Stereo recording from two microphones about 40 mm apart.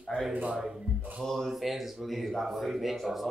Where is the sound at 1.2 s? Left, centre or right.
Centre.